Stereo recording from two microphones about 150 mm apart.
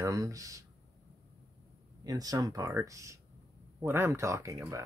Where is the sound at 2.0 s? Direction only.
25° right (ahead or behind).